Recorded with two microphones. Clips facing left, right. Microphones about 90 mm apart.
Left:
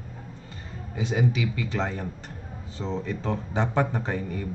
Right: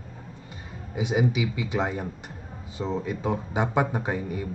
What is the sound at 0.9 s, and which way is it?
Speech, 15° right (ahead or behind).